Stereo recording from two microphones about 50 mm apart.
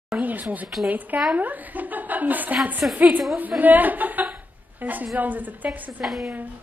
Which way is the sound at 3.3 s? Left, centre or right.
Right.